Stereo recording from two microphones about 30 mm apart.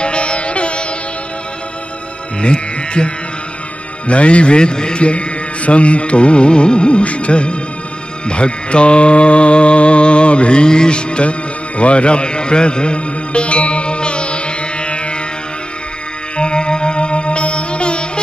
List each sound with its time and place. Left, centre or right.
0.0 s music: left
2.4 s speech: left
4.1 s speech: left
5.0 s music: left
16.3 s music: left